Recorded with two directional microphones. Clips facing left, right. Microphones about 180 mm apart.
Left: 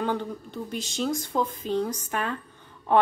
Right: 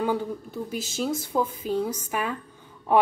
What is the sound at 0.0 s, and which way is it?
A woman's voice, 10° right (ahead or behind).